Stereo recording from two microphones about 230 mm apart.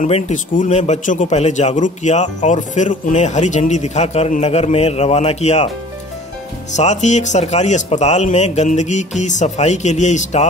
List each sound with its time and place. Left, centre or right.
0.0 s a man's voice: left
6.7 s speech: left